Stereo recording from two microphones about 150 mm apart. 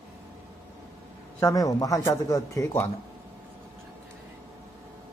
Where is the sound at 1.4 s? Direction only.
20° left (ahead or behind).